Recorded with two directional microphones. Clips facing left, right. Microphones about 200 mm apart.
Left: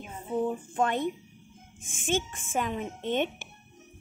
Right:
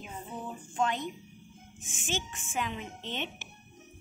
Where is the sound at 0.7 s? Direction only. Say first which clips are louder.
Left 2 dB; 55° left (ahead or behind).